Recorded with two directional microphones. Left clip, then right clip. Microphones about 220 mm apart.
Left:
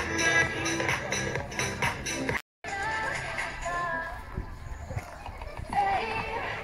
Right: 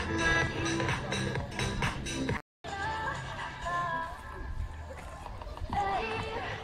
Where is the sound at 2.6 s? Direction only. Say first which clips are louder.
Left 3 dB; 45° left (ahead or behind).